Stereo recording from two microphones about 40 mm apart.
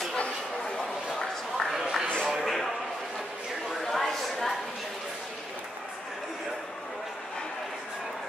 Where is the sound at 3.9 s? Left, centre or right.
Centre.